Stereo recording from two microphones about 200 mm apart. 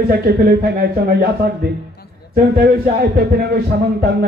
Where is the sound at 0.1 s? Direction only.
50° right (ahead or behind).